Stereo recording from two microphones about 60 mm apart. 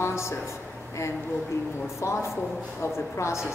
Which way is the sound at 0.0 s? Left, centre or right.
Left.